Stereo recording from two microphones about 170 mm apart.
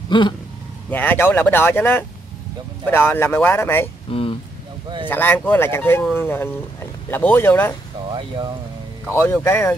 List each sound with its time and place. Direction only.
0.1 s speech: 30° left (ahead or behind)
0.8 s speech: 10° left (ahead or behind)
4.1 s speech: 35° left (ahead or behind)
5.0 s speech: 10° left (ahead or behind)
8.1 s speech: 30° right (ahead or behind)
9.1 s speech: 15° left (ahead or behind)